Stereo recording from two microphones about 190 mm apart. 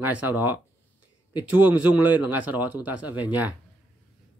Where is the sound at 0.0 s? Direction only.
10° right (ahead or behind).